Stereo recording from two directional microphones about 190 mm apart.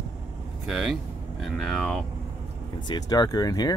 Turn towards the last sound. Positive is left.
turn(degrees=20)  # may be behind; listen again after turning